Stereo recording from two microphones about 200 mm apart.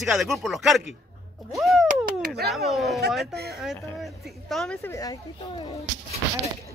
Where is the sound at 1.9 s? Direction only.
45° right (ahead or behind).